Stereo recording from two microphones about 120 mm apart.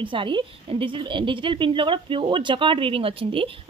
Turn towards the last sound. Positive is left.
turn(degrees=-50)  # may be behind; listen again after turning